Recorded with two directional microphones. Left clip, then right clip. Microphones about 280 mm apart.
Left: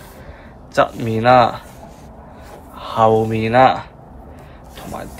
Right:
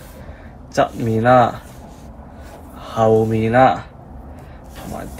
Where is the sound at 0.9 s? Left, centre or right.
Centre.